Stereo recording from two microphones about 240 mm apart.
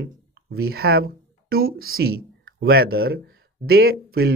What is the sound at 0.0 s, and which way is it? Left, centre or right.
Speech, right.